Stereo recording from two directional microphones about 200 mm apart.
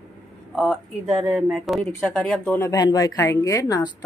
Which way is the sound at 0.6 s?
Centre (ahead or behind).